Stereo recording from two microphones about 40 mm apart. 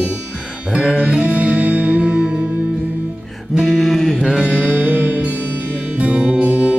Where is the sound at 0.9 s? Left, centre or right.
Right.